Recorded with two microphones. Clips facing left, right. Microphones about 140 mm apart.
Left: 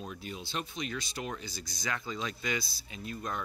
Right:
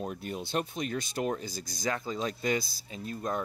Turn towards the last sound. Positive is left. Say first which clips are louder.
# right 4 dB
turn(degrees=-40)  # may be behind; listen again after turning